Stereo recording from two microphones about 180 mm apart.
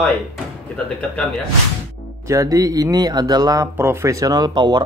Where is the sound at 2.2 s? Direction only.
20° right (ahead or behind).